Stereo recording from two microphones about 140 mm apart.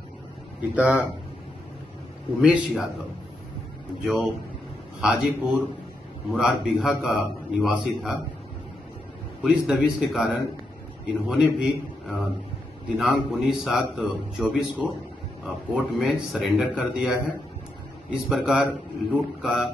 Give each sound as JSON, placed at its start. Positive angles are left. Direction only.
{"t": 0.6, "sound": "speech", "side_deg": -10}
{"t": 2.4, "sound": "a man's voice", "side_deg": -5}
{"t": 4.0, "sound": "a man's voice", "side_deg": 0}
{"t": 9.4, "sound": "a man's voice", "side_deg": -5}